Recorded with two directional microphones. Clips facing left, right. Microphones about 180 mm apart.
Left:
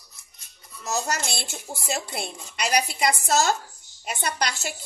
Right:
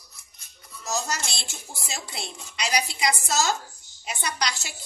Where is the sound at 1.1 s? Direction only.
55° left (ahead or behind).